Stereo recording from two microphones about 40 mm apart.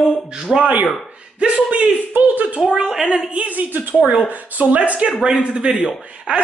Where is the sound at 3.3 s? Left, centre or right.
Right.